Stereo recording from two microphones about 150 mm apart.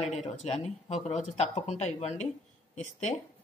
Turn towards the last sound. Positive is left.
turn(degrees=45)  # may be behind; listen again after turning